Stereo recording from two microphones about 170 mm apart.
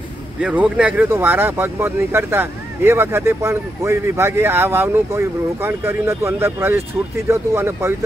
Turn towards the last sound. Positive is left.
turn(degrees=-15)  # may be behind; listen again after turning